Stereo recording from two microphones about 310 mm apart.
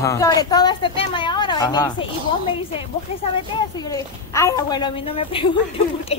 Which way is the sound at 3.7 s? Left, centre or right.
Centre.